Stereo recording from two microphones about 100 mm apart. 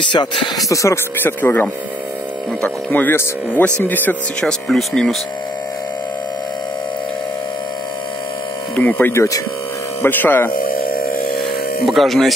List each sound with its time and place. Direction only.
0.1 s speech: 50° left (ahead or behind)
1.2 s speech: 20° left (ahead or behind)
4.5 s speech: 5° left (ahead or behind)
8.7 s speech: 15° left (ahead or behind)
11.8 s speech: centre (ahead or behind)